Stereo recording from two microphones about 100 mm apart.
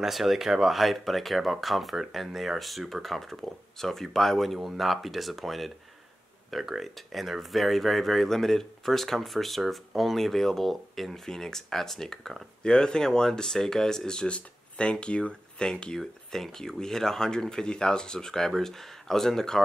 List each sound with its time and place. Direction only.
0.0 s speech: centre (ahead or behind)